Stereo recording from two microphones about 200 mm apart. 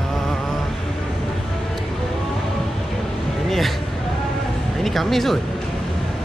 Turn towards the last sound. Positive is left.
turn(degrees=0)  # may be behind; listen again after turning